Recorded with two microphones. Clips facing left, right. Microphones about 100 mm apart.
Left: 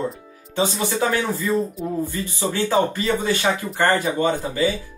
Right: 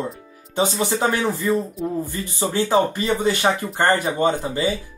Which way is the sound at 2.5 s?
20° right (ahead or behind).